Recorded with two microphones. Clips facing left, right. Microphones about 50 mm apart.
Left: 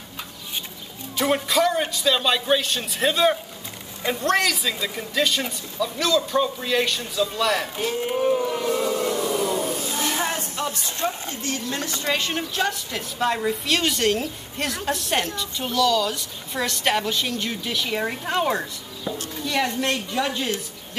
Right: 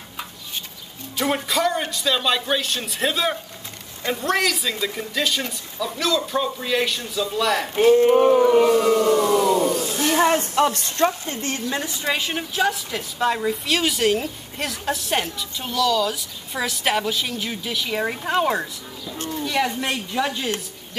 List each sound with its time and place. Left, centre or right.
1.1 s a woman's voice: centre
8.0 s a sound: right
8.6 s siren: right
9.5 s a sound: centre
10.0 s music: right
11.7 s a woman's voice: centre